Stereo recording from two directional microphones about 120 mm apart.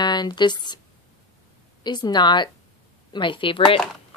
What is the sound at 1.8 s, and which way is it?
A woman's voice, 35° left (ahead or behind).